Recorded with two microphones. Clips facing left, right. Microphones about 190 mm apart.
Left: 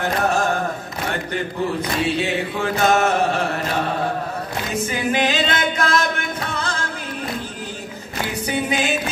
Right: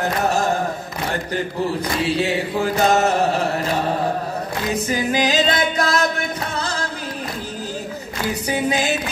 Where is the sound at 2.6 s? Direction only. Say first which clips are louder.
Right 1 dB; 35° right (ahead or behind).